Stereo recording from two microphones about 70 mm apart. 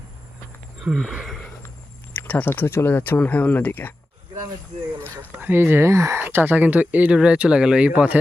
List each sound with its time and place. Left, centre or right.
0.9 s a sound: right
2.1 s speech: left
5.4 s speech: right